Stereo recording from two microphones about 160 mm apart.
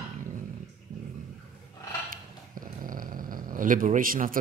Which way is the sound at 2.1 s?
60° right (ahead or behind).